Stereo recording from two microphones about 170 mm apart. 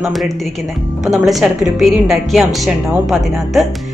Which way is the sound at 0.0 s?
Centre (ahead or behind).